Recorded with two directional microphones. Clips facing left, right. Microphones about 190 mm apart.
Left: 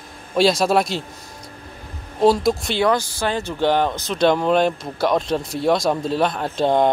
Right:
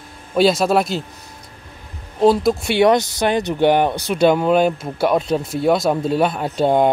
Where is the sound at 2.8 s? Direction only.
20° right (ahead or behind).